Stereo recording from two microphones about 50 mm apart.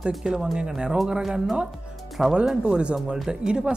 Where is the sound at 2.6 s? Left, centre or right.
Right.